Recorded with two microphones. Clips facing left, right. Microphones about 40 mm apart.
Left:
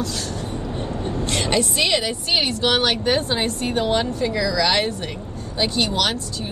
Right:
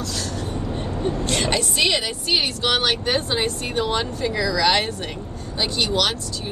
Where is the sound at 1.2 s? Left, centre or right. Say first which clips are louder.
Left 4 dB; centre.